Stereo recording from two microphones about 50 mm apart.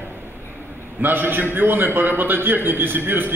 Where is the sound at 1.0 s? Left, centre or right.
Right.